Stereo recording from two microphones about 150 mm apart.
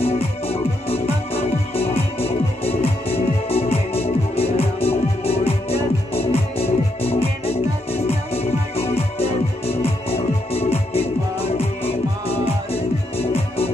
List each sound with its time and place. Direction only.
0.0 s music: 40° left (ahead or behind)